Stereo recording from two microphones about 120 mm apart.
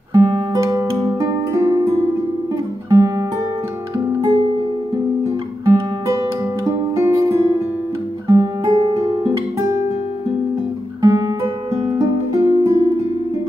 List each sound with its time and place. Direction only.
0.1 s music: 35° right (ahead or behind)
2.9 s music: 25° right (ahead or behind)
5.7 s music: 25° right (ahead or behind)
11.0 s music: 35° right (ahead or behind)